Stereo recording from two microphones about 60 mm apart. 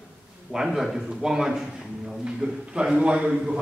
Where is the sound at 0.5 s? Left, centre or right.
Centre.